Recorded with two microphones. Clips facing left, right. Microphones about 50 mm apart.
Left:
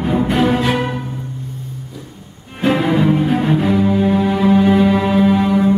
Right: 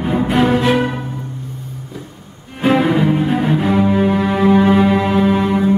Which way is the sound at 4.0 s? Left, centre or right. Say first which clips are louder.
Even; right.